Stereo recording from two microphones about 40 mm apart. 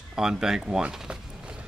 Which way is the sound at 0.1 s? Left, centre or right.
Centre.